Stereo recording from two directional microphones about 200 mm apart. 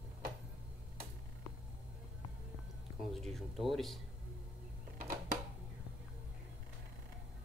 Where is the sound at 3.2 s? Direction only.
Centre (ahead or behind).